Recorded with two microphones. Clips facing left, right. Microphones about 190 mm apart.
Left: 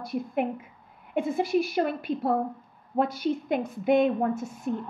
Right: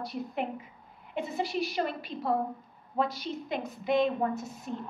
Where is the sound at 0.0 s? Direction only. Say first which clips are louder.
Left 5 dB; 50° left (ahead or behind).